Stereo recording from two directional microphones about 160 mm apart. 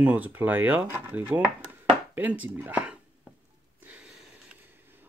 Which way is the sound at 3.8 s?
10° right (ahead or behind).